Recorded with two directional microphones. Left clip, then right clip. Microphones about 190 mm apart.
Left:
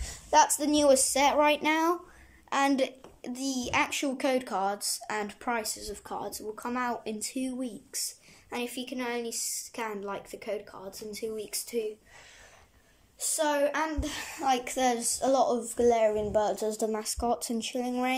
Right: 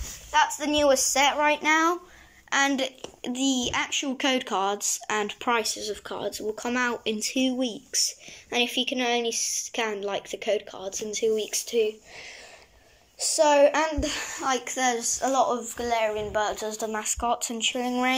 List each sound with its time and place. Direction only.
0.6 s speech: 20° left (ahead or behind)
4.0 s speech: 5° left (ahead or behind)
13.2 s a child's voice: 5° right (ahead or behind)
14.4 s speech: 10° left (ahead or behind)
17.8 s speech: 10° left (ahead or behind)